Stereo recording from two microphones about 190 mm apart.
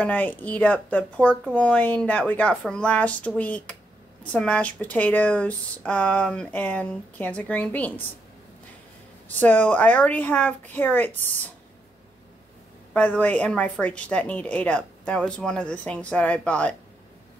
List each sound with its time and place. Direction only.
0.0 s a woman's voice: 10° left (ahead or behind)
9.4 s a woman's voice: 10° left (ahead or behind)
12.9 s a woman's voice: 10° left (ahead or behind)